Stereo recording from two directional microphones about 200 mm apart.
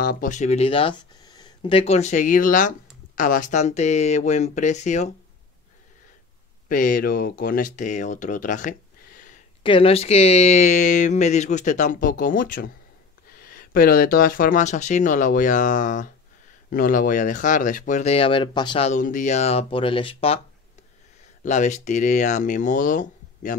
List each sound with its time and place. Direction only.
0.0 s speech: 45° left (ahead or behind)
6.7 s speech: 45° left (ahead or behind)
9.6 s speech: 25° left (ahead or behind)
21.5 s speech: 35° left (ahead or behind)